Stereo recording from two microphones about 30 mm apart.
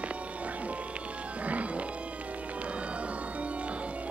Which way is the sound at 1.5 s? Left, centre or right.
Right.